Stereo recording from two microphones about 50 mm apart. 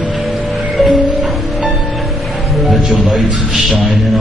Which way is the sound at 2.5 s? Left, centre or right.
Centre.